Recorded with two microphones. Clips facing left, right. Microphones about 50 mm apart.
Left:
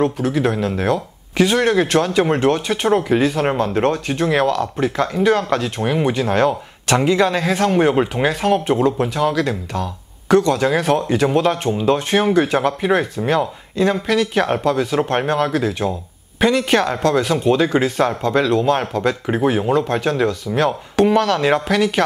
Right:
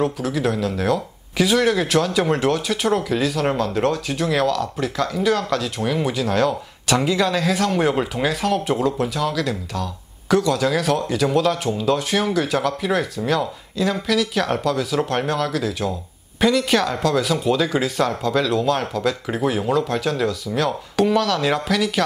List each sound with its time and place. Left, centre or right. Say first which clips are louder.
0.0 s speech: left 3 dB; centre